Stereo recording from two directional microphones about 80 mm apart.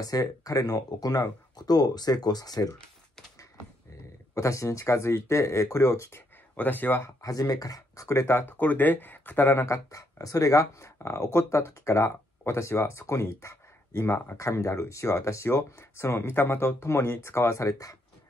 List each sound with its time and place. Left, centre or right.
0.0 s speech: left
4.4 s speech: left
6.5 s speech: left
7.2 s speech: left